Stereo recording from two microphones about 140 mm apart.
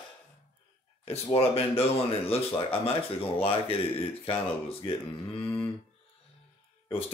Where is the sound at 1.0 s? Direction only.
45° left (ahead or behind).